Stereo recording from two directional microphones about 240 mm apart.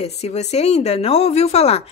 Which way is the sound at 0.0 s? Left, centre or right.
Left.